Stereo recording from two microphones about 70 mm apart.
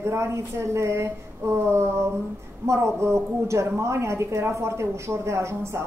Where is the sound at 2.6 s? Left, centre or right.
Right.